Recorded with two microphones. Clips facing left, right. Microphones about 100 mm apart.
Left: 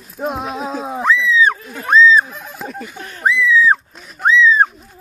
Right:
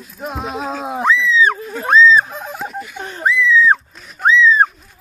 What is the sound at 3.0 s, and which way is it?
Whistling, 25° right (ahead or behind).